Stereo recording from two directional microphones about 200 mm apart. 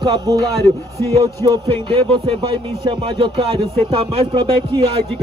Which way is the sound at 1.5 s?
25° right (ahead or behind).